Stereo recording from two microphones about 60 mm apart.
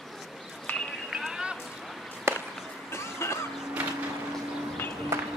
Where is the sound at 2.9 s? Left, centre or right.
Left.